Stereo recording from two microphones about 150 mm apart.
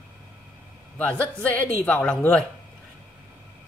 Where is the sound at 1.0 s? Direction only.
10° left (ahead or behind).